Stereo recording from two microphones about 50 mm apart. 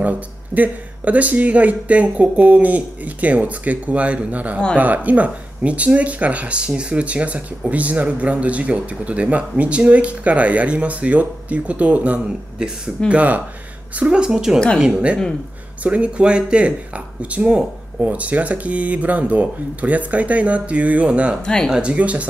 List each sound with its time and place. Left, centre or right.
0.6 s speech: right
12.5 s a woman's voice: centre
13.1 s speech: right
13.9 s a woman's voice: centre
15.8 s speech: right
21.4 s speech: centre
21.8 s speech: right